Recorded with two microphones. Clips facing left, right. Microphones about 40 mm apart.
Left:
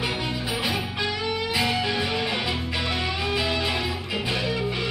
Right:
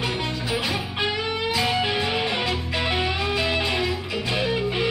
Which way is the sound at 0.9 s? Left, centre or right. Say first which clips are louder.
Right 1 dB; right.